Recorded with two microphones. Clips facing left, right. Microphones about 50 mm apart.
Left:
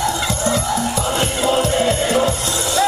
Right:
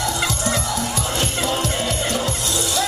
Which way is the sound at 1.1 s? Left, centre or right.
Left.